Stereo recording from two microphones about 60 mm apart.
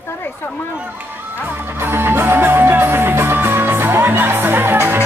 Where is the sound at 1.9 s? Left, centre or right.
Right.